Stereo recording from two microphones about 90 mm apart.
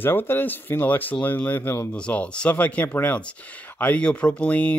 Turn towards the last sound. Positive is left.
turn(degrees=15)  # may be behind; listen again after turning